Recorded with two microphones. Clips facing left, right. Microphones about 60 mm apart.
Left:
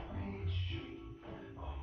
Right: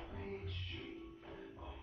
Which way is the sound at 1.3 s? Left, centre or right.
Left.